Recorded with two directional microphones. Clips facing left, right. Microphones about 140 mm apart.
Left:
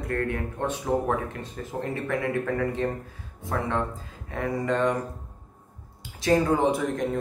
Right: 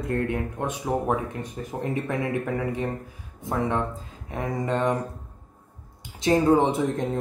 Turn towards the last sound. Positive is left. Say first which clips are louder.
# right 2 dB
turn(degrees=-20)  # may be behind; listen again after turning